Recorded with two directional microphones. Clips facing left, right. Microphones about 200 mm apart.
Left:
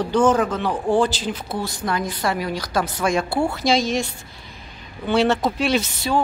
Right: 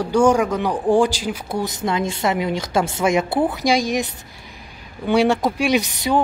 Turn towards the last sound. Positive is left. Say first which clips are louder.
# right 2 dB
turn(degrees=-15)  # may be behind; listen again after turning